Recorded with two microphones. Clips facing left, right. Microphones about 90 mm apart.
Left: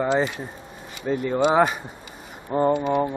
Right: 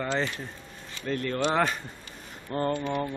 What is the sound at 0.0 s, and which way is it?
Speech, 20° left (ahead or behind).